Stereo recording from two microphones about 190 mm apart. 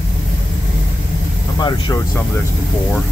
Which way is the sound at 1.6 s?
20° left (ahead or behind).